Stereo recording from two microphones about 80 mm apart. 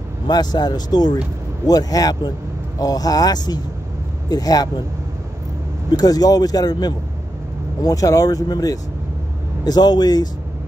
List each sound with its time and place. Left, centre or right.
0.3 s speech: left
5.9 s speech: left